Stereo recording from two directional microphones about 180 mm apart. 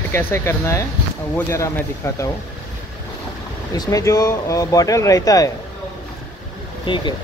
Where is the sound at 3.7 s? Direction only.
20° left (ahead or behind).